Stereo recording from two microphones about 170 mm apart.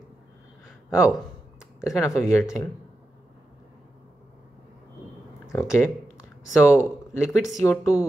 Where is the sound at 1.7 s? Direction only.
20° left (ahead or behind).